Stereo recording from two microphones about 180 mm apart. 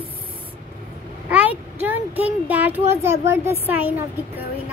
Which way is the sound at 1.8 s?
10° right (ahead or behind).